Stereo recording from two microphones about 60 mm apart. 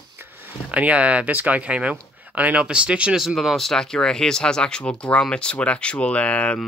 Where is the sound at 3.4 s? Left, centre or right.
Centre.